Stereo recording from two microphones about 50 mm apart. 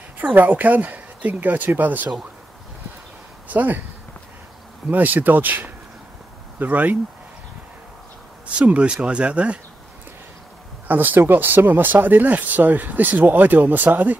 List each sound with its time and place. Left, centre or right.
0.2 s speech: right
3.4 s speech: right
4.8 s speech: right
8.5 s speech: right
10.9 s speech: right